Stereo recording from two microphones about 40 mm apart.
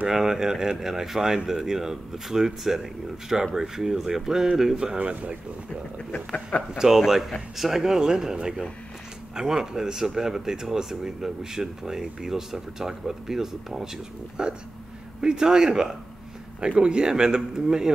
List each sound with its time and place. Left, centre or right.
0.1 s speech: centre
4.9 s speech: right
6.1 s speech: left
6.8 s speech: centre
14.4 s speech: right